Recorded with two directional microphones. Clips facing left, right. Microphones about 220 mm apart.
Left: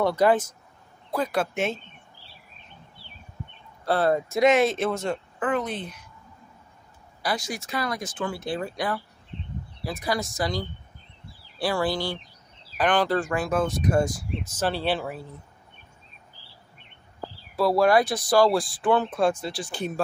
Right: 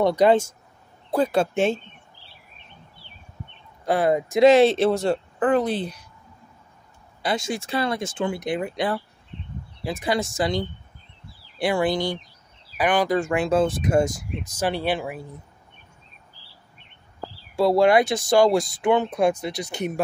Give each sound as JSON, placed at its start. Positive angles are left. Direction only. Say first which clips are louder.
{"t": 0.0, "sound": "speech", "louder": "right 3 dB", "side_deg": -20}
{"t": 3.8, "sound": "speech", "louder": "right 2 dB", "side_deg": -15}
{"t": 4.4, "sound": "speech", "louder": "right 6 dB", "side_deg": -30}
{"t": 7.2, "sound": "speech", "louder": "right 4 dB", "side_deg": -25}
{"t": 13.2, "sound": "speech", "louder": "right 4 dB", "side_deg": -25}
{"t": 17.6, "sound": "speech", "louder": "right 3 dB", "side_deg": -25}